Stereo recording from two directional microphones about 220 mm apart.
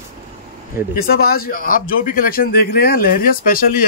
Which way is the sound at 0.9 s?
40° left (ahead or behind).